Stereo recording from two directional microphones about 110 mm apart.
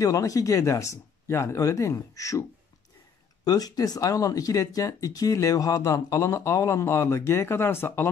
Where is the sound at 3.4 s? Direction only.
35° left (ahead or behind).